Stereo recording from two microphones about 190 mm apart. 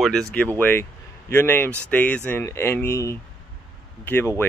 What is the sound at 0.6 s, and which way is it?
Speech, 10° left (ahead or behind).